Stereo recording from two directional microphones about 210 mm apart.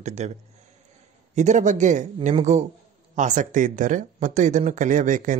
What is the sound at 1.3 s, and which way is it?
Speech, 35° right (ahead or behind).